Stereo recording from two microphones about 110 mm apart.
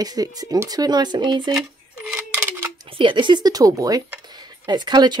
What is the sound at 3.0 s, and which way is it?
Speech, 45° right (ahead or behind).